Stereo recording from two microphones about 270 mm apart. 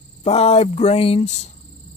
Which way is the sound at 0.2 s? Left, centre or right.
Left.